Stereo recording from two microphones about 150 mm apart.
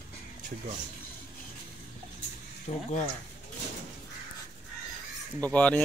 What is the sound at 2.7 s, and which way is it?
Speech, 45° left (ahead or behind).